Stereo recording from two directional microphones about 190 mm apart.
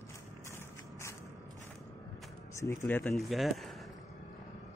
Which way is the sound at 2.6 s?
10° left (ahead or behind).